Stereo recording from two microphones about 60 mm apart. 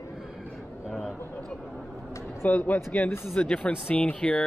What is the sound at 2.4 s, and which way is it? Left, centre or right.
Speech, left.